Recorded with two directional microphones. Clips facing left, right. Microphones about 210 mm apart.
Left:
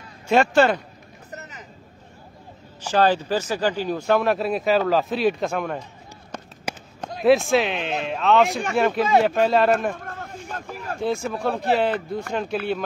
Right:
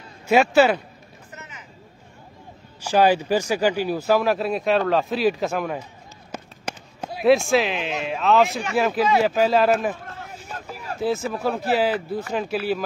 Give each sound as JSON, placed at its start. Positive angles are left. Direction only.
{"t": 0.3, "sound": "speech", "side_deg": -5}
{"t": 1.3, "sound": "vehicle", "side_deg": 40}
{"t": 2.8, "sound": "speech", "side_deg": -10}
{"t": 6.3, "sound": "fireworks", "side_deg": -5}
{"t": 7.0, "sound": "speech", "side_deg": -5}
{"t": 10.5, "sound": "a sound", "side_deg": -5}
{"t": 11.0, "sound": "speech", "side_deg": -5}